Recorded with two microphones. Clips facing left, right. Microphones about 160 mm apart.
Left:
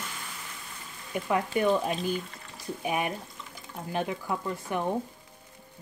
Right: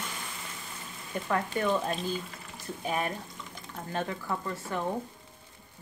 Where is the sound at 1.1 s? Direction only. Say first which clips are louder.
Left 3 dB; 10° left (ahead or behind).